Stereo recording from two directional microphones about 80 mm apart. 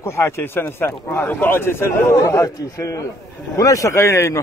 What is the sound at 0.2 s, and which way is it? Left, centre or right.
A man's voice, left.